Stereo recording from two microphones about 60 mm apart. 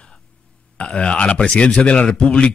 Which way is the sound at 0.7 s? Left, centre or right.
Centre.